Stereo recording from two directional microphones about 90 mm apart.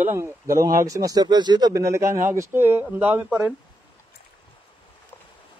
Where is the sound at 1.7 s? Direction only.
35° right (ahead or behind); by 3.5 s 20° right (ahead or behind).